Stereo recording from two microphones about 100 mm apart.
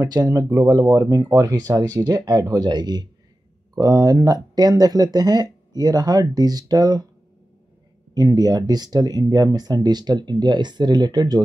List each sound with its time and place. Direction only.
0.0 s speech: 35° right (ahead or behind)
8.1 s speech: 40° right (ahead or behind)